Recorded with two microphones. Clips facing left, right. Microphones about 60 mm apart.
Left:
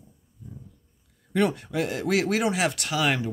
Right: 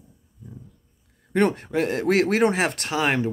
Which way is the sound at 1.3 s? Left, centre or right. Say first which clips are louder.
Right 3 dB; right.